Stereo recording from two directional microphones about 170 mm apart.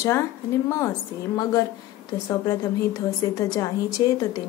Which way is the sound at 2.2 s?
20° left (ahead or behind).